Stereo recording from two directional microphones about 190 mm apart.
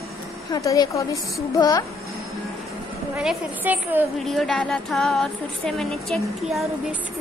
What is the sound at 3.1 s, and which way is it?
Speech, 5° right (ahead or behind).